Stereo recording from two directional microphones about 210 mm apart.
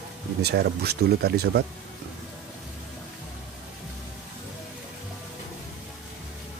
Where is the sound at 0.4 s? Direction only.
50° right (ahead or behind).